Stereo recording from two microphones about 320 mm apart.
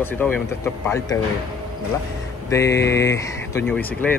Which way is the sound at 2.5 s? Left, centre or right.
Centre.